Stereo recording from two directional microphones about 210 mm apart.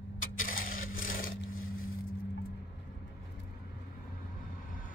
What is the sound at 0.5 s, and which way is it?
Wood, 40° left (ahead or behind).